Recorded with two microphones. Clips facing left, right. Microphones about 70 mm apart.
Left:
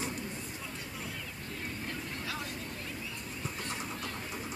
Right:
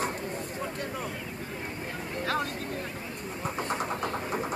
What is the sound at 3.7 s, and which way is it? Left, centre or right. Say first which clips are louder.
Vehicle: right 9 dB; right.